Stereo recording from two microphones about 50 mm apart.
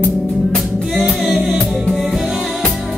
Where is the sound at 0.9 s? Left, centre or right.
Centre.